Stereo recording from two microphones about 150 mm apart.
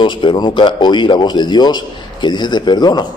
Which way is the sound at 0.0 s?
30° left (ahead or behind).